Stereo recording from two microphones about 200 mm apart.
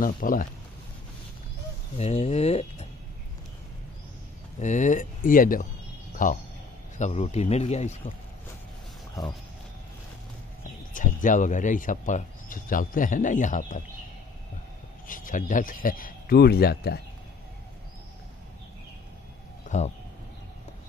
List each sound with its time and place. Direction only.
0.0 s speech: 45° left (ahead or behind)
2.0 s speech: 30° left (ahead or behind)
4.6 s speech: 35° left (ahead or behind)
9.2 s speech: centre (ahead or behind)
10.9 s speech: 40° left (ahead or behind)
15.0 s speech: 40° left (ahead or behind)
19.7 s speech: 35° left (ahead or behind)